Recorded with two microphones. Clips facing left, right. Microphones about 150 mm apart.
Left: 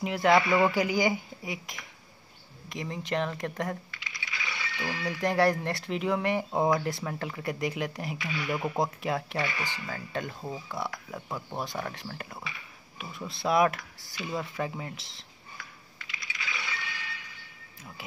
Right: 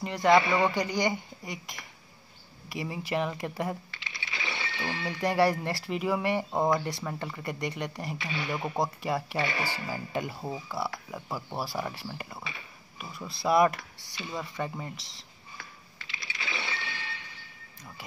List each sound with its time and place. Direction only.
0.0 s speech: 5° left (ahead or behind)
0.4 s speech: 25° right (ahead or behind)
0.7 s speech: 5° left (ahead or behind)
3.9 s coin: 25° right (ahead or behind)
5.2 s speech: centre (ahead or behind)
8.2 s speech: 25° right (ahead or behind)
8.7 s speech: centre (ahead or behind)
9.4 s speech: 30° right (ahead or behind)
9.8 s speech: 10° right (ahead or behind)
15.5 s coin: 30° right (ahead or behind)